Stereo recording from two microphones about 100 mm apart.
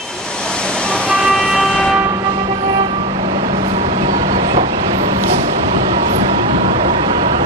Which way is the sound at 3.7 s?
85° right.